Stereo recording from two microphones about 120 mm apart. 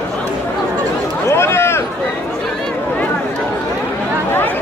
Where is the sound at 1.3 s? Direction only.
20° left (ahead or behind).